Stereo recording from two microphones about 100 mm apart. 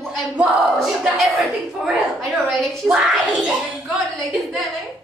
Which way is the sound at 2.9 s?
10° right (ahead or behind).